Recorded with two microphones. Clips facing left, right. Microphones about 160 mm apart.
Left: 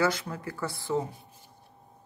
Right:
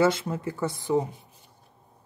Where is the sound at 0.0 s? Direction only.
25° right (ahead or behind).